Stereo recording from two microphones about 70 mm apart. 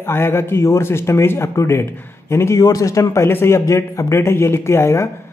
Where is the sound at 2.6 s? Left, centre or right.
Left.